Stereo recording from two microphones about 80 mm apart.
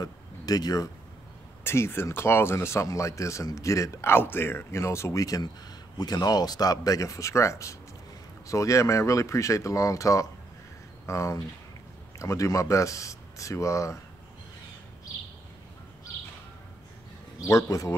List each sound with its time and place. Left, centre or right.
0.0 s a sound: left
1.6 s a man's voice: left
17.4 s a man's voice: left